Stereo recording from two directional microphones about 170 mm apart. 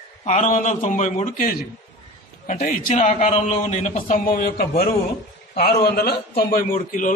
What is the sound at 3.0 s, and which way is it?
A man's voice, 40° left (ahead or behind).